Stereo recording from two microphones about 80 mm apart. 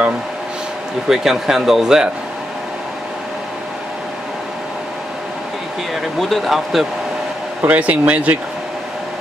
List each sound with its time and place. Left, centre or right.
1.0 s speech: centre
6.1 s speech: centre
7.6 s speech: centre